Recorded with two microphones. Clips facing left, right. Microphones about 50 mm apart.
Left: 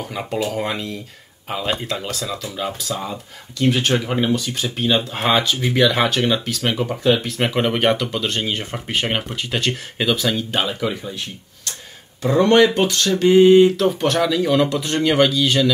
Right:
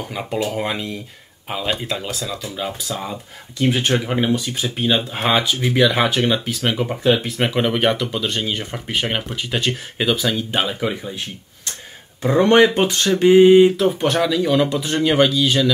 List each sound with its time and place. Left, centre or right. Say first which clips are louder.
0.0 s speech: even; centre
3.5 s speech: even; centre
8.4 s speech: even; centre
12.2 s speech: right 1 dB; right
13.3 s speech: right 1 dB; centre